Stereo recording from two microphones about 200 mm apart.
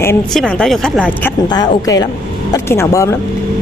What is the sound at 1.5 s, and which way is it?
A woman's voice, 20° left (ahead or behind).